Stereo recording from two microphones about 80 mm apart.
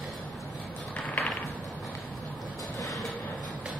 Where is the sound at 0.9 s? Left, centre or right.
Centre.